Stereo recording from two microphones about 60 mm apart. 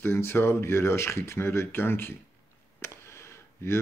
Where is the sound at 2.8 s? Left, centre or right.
Left.